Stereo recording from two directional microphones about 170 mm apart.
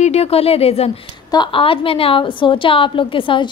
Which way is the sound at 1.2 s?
25° left (ahead or behind).